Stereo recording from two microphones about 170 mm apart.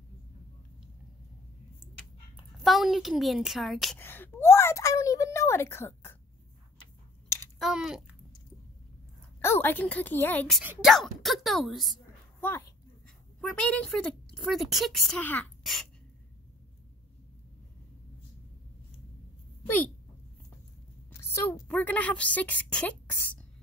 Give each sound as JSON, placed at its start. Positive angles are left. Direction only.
{"t": 2.3, "sound": "a woman's voice", "side_deg": 0}
{"t": 4.0, "sound": "a woman's voice", "side_deg": 15}
{"t": 7.5, "sound": "a child's voice", "side_deg": 0}
{"t": 9.4, "sound": "a woman's voice", "side_deg": 15}
{"t": 10.6, "sound": "a woman's voice", "side_deg": -10}
{"t": 10.9, "sound": "speech", "side_deg": 0}
{"t": 12.4, "sound": "speech", "side_deg": 15}
{"t": 19.6, "sound": "speech", "side_deg": 10}
{"t": 21.2, "sound": "a woman's voice", "side_deg": 10}